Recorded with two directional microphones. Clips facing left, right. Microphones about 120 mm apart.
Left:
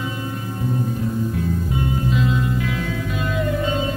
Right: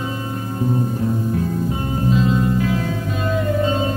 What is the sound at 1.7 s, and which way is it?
Music, 35° right (ahead or behind).